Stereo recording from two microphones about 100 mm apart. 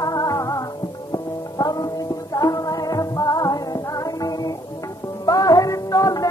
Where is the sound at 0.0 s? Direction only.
40° left (ahead or behind).